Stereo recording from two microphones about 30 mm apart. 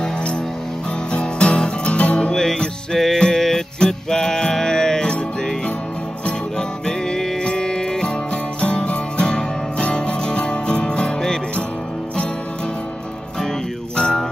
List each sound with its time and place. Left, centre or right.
1.1 s music: left
2.3 s music: centre
6.9 s music: left
8.7 s music: left
9.2 s music: left